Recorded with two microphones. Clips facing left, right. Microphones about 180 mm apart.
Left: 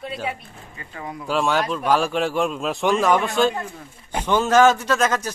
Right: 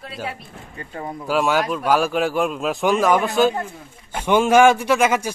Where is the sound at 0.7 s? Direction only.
40° right (ahead or behind).